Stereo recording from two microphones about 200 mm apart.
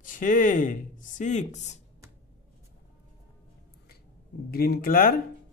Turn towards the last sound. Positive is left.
turn(degrees=45)  # may be behind; listen again after turning